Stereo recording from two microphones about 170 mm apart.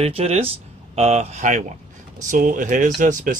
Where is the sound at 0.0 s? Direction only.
40° right (ahead or behind).